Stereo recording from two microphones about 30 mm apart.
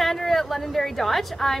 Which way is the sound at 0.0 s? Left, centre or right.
Centre.